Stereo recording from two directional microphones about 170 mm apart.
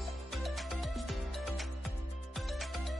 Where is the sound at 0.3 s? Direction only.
Centre (ahead or behind).